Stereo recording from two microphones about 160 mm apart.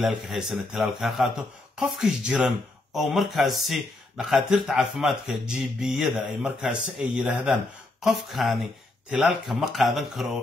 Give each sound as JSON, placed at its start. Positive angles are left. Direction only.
{"t": 0.0, "sound": "speech", "side_deg": 0}